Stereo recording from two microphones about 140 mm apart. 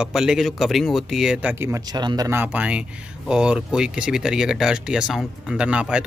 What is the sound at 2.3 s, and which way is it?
Speech, 10° right (ahead or behind).